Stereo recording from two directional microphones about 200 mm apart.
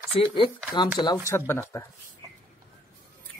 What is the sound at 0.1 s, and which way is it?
Speech, 25° left (ahead or behind).